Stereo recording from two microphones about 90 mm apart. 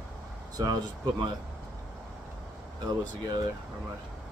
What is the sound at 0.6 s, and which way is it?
Speech, 45° right (ahead or behind).